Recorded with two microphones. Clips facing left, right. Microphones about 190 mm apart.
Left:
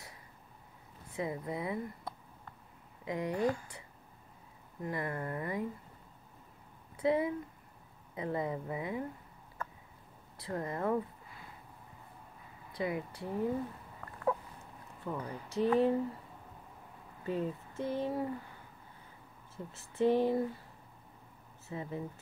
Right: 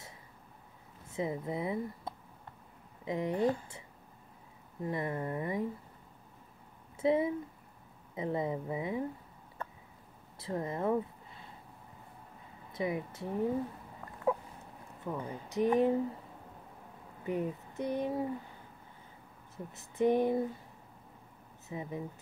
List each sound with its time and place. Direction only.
1.1 s speech: 25° right (ahead or behind)
4.8 s speech: 20° right (ahead or behind)
7.0 s speech: 25° right (ahead or behind)
9.6 s a sound: 30° right (ahead or behind)
10.4 s speech: 20° right (ahead or behind)
12.7 s speech: 20° right (ahead or behind)
15.0 s speech: 20° right (ahead or behind)
17.2 s speech: 15° right (ahead or behind)
19.5 s speech: 20° right (ahead or behind)
21.6 s speech: 15° right (ahead or behind)